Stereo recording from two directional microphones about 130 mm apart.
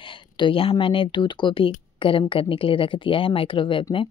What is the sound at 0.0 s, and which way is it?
A woman's voice, 40° left (ahead or behind).